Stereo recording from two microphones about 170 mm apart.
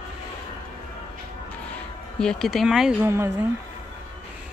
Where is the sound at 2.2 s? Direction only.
5° left (ahead or behind); by 3.3 s 15° right (ahead or behind).